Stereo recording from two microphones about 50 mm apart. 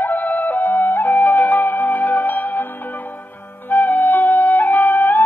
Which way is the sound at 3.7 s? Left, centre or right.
Left.